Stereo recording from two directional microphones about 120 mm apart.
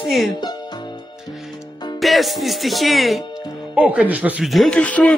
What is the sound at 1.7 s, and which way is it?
Music, 35° left (ahead or behind).